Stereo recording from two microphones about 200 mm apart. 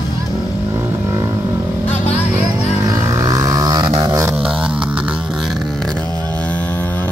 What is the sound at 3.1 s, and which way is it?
Vehicle, 15° right (ahead or behind).